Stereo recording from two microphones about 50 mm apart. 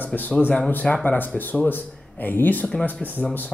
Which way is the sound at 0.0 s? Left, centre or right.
Left.